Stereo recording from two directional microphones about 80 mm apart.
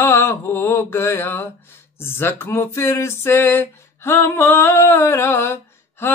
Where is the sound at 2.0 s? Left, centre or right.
Left.